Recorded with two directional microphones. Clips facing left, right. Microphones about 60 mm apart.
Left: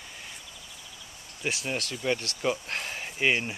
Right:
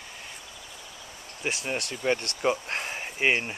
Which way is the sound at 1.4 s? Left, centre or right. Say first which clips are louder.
Right 1 dB; centre.